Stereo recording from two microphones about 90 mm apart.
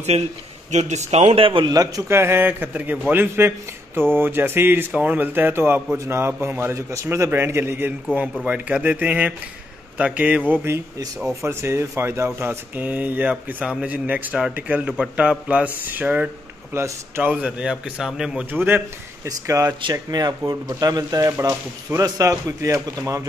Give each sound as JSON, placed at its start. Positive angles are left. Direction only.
{"t": 1.3, "sound": "a man's voice", "side_deg": -80}
{"t": 1.7, "sound": "speech", "side_deg": -40}
{"t": 2.0, "sound": "speech", "side_deg": -30}
{"t": 8.5, "sound": "speech", "side_deg": -15}
{"t": 16.7, "sound": "speech", "side_deg": -30}
{"t": 17.2, "sound": "speech", "side_deg": -15}
{"t": 18.5, "sound": "speech", "side_deg": -20}
{"t": 19.2, "sound": "speech", "side_deg": -35}
{"t": 19.9, "sound": "speech", "side_deg": -45}
{"t": 21.3, "sound": "speech", "side_deg": -35}